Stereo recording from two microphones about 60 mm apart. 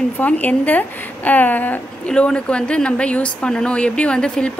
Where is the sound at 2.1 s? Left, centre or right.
Centre.